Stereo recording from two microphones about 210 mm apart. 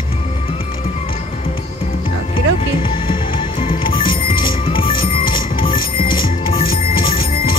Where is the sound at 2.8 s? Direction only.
25° left (ahead or behind).